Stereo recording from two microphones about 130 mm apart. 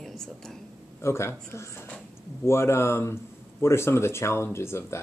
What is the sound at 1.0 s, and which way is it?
Speech, 20° left (ahead or behind).